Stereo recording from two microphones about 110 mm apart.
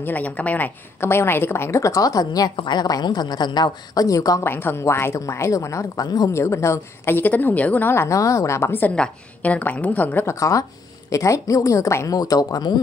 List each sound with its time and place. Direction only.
0.0 s a woman's voice: 15° left (ahead or behind); by 4.5 s 30° left (ahead or behind)
4.5 s a woman's voice: 20° left (ahead or behind)
11.1 s a woman's voice: 30° left (ahead or behind)